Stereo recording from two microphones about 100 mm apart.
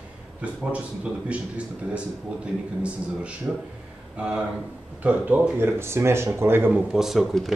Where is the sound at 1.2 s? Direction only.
10° right (ahead or behind).